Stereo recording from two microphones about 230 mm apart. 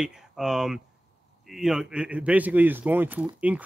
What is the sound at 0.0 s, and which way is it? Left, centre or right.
Speech, centre.